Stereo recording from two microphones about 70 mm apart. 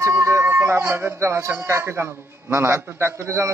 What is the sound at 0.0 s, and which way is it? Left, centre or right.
A man's voice, right.